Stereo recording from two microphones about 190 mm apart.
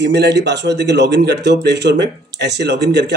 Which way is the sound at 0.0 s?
60° right (ahead or behind).